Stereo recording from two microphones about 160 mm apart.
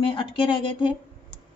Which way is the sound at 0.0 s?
30° left (ahead or behind).